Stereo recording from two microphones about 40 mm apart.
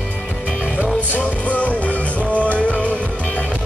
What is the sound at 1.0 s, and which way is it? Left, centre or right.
Music, left.